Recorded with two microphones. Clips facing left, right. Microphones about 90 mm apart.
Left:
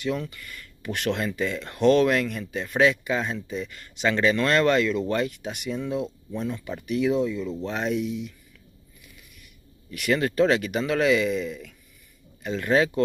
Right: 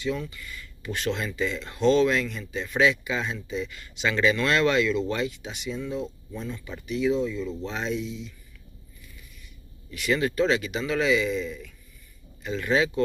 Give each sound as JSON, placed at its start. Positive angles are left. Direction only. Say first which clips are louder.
{"t": 0.0, "sound": "speech", "louder": "left 1 dB", "side_deg": 60}
{"t": 12.4, "sound": "speech", "louder": "left 2 dB", "side_deg": 50}